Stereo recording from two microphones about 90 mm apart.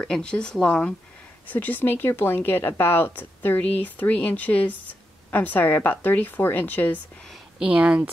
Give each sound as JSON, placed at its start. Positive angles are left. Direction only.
{"t": 0.0, "sound": "a woman's voice", "side_deg": 10}
{"t": 7.5, "sound": "speech", "side_deg": -15}